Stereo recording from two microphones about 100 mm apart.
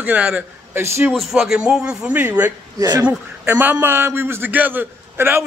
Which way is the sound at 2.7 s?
40° right (ahead or behind).